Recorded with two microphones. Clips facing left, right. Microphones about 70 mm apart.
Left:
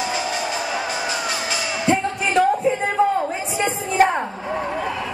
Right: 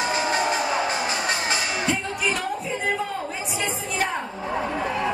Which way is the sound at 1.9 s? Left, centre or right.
Left.